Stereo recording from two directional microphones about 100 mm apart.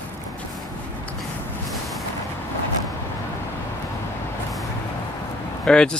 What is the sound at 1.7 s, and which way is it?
Vehicle, centre (ahead or behind).